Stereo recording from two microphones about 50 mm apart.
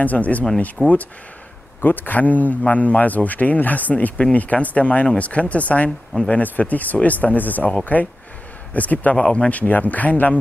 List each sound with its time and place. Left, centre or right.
0.0 s speech: left
0.8 s speech: centre
1.8 s speech: left
9.1 s speech: centre